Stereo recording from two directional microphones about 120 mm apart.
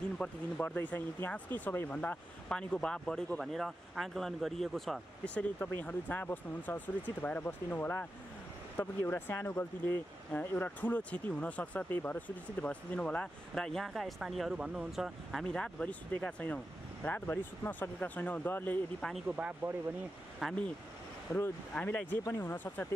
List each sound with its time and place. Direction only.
0.2 s speech: 15° left (ahead or behind)
18.9 s speech: 5° left (ahead or behind)
19.2 s speech: 10° right (ahead or behind)
20.3 s speech: 5° left (ahead or behind)
21.3 s speech: 20° left (ahead or behind)